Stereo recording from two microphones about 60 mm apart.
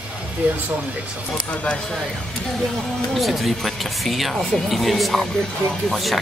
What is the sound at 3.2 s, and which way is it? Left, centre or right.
Speech, centre.